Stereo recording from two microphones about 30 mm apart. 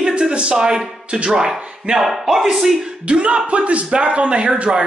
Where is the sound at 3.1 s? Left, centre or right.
Right.